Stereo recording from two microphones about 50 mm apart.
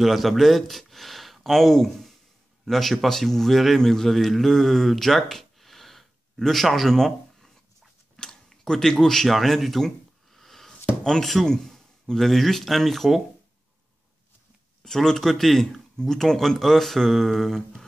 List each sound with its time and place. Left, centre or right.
0.0 s a man's voice: centre
14.8 s speech: centre